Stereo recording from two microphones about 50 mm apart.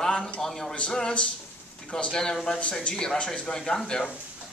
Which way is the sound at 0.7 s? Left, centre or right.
Centre.